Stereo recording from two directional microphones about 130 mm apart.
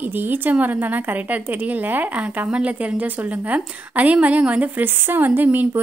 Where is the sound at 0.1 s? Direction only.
15° right (ahead or behind).